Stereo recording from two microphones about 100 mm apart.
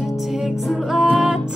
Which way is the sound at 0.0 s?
Centre (ahead or behind).